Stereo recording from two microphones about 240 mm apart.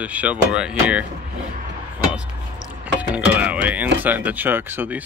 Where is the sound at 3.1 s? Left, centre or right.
Centre.